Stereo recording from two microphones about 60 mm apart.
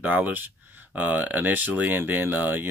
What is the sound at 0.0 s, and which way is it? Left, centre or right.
Speech, right.